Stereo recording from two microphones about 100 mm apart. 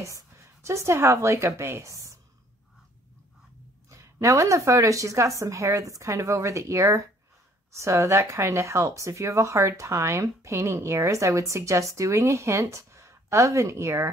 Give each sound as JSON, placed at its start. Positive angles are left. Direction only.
{"t": 0.0, "sound": "a woman's voice", "side_deg": -30}
{"t": 3.9, "sound": "a woman's voice", "side_deg": -30}